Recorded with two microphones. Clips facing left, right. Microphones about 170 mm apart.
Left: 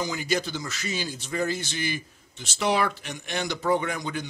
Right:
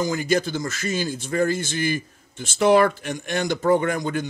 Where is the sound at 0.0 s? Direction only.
45° right (ahead or behind).